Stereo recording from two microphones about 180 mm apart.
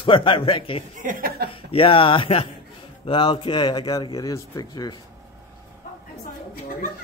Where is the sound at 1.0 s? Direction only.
50° right (ahead or behind).